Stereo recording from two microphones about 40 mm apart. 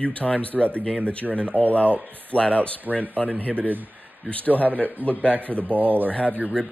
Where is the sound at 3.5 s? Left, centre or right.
Right.